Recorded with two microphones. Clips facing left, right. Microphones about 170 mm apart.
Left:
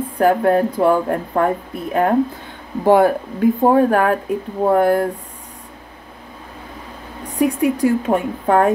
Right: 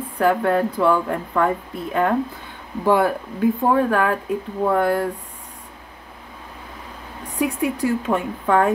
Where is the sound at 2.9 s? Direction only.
50° left (ahead or behind).